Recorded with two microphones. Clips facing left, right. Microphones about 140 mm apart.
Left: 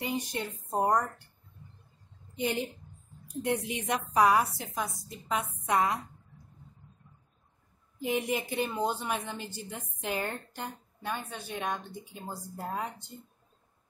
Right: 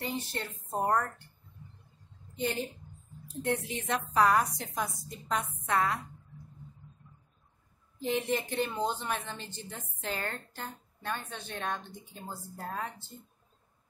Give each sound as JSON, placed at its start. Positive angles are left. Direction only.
{"t": 0.0, "sound": "a woman's voice", "side_deg": 15}
{"t": 2.3, "sound": "a woman's voice", "side_deg": 15}
{"t": 5.7, "sound": "a woman's voice", "side_deg": 15}
{"t": 8.0, "sound": "a woman's voice", "side_deg": 10}